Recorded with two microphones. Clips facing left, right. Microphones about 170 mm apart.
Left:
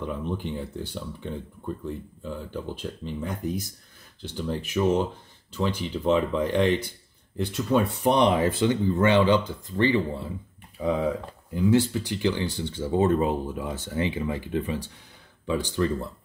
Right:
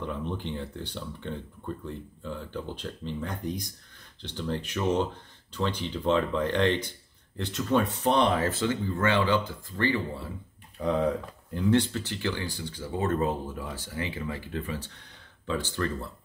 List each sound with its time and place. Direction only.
0.0 s speech: 10° left (ahead or behind)
10.8 s speech: centre (ahead or behind)